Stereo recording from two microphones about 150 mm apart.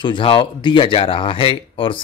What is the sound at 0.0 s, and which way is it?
Speech, 35° left (ahead or behind).